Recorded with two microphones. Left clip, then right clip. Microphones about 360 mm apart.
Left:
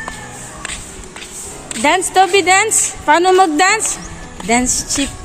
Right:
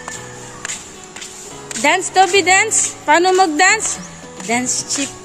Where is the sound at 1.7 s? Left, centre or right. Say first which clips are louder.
Left 1 dB; centre.